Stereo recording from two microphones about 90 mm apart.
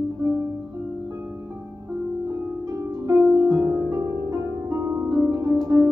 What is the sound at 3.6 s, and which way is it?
Harp, 35° right (ahead or behind).